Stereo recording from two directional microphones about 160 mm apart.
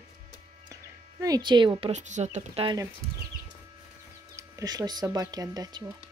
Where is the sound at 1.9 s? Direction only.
50° right (ahead or behind).